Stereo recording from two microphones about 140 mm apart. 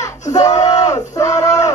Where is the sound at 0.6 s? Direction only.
25° left (ahead or behind).